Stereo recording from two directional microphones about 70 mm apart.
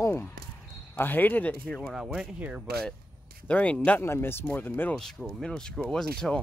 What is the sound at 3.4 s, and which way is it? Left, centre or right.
Speech, centre.